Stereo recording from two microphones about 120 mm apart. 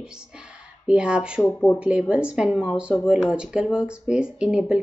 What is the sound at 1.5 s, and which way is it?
Speech, 15° left (ahead or behind).